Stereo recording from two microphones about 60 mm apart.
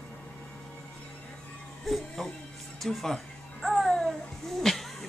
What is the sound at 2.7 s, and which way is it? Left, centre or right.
Babbling, centre.